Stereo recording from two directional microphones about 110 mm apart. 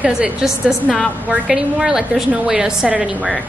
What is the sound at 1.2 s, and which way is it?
A woman's voice, 15° right (ahead or behind).